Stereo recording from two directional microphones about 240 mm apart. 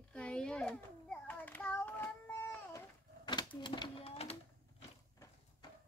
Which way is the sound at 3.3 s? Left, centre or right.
Centre.